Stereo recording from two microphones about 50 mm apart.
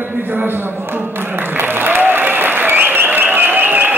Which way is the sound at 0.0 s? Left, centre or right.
Right.